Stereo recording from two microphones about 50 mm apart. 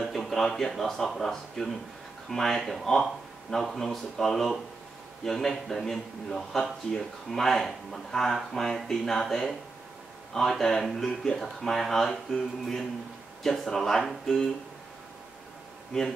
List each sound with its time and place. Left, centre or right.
0.0 s a man's voice: centre
15.9 s a man's voice: centre